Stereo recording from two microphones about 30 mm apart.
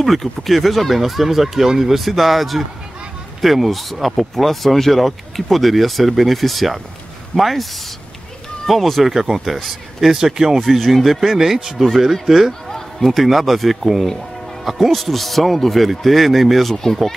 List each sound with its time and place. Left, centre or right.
0.0 s speech: centre
2.0 s speech: centre
8.6 s speech: centre
9.1 s speech: centre
10.1 s speech: centre
10.8 s speech: centre
16.7 s speech: centre